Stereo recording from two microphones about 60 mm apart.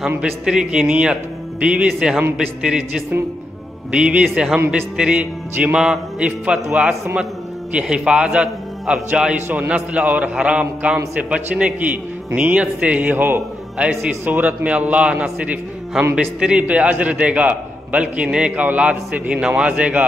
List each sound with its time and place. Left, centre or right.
0.2 s speech: centre
3.9 s a man's voice: centre
9.3 s a man's voice: right
13.1 s a man's voice: right
13.7 s a man's voice: centre
14.2 s a man's voice: right
16.0 s a man's voice: centre
16.3 s a man's voice: centre